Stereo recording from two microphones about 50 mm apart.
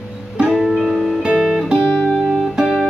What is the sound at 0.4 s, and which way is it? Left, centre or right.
Music, centre.